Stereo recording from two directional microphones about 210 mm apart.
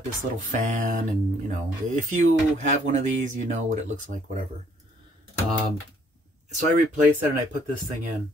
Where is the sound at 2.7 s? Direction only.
35° right (ahead or behind).